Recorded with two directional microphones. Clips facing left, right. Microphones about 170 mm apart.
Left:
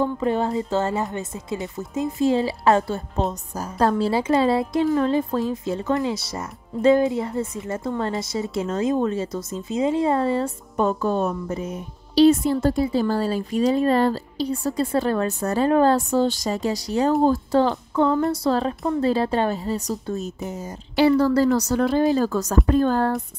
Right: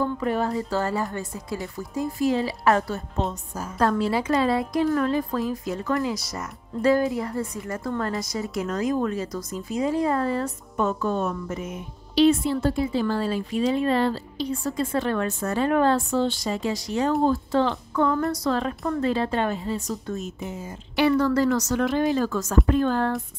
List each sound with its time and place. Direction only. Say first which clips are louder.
0.0 s a woman's voice: left 3 dB; 25° left (ahead or behind)
17.9 s a woman's voice: left 3 dB; 25° left (ahead or behind); by 23.2 s 40° left (ahead or behind)